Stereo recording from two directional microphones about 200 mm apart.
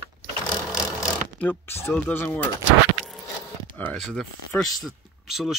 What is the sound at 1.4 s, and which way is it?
Speech, 10° left (ahead or behind).